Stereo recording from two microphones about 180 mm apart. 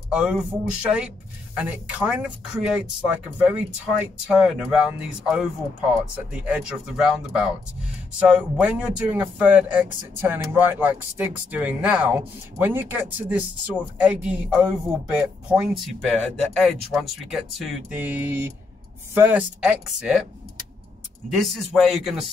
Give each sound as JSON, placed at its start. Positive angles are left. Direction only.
{"t": 0.1, "sound": "speech", "side_deg": -5}
{"t": 21.3, "sound": "speech", "side_deg": 0}